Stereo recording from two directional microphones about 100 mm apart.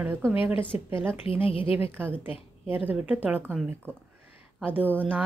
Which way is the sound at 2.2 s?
70° left (ahead or behind).